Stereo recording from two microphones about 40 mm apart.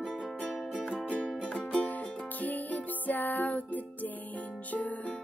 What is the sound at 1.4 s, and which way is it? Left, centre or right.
Music, left.